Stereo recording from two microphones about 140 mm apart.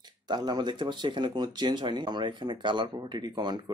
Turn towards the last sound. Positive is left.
turn(degrees=-35)  # may be behind; listen again after turning